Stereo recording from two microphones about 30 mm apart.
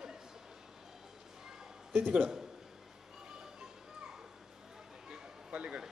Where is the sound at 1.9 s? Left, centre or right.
Right.